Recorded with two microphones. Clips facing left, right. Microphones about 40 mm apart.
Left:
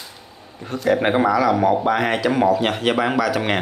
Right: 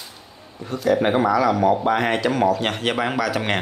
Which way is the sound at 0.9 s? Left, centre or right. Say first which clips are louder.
Left 1 dB; left.